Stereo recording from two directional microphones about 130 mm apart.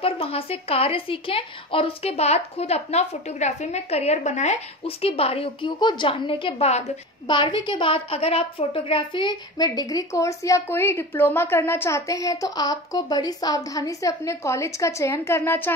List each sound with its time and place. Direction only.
0.0 s a woman's voice: 45° left (ahead or behind); by 15.7 s 15° left (ahead or behind)